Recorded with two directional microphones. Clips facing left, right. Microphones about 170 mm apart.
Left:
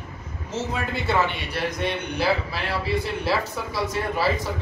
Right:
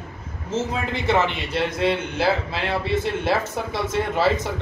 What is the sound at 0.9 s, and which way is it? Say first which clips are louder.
Speech: right 3 dB; 20° right (ahead or behind).